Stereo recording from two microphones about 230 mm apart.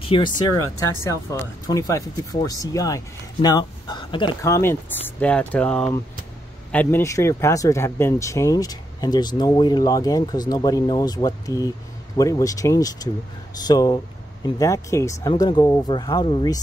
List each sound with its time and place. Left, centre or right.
0.0 s speech: left